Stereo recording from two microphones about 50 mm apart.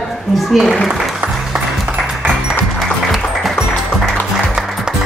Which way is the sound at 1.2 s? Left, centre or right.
Right.